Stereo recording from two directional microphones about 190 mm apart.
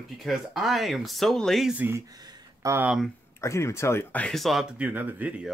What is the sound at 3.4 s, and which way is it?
Speech, 15° left (ahead or behind).